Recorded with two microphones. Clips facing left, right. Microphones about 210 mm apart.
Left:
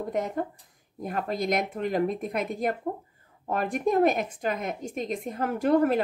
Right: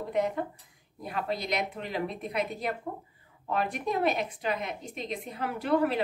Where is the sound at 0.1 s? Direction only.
45° left (ahead or behind).